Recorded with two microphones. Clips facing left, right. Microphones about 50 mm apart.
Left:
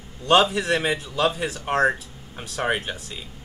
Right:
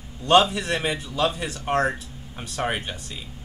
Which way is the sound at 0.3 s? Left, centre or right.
Centre.